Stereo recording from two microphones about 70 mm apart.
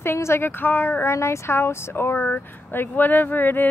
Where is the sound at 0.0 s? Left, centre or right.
Left.